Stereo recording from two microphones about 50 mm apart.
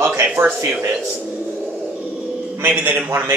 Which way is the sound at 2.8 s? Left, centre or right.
Right.